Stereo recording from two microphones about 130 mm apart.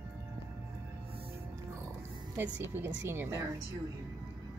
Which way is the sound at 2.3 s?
15° right (ahead or behind).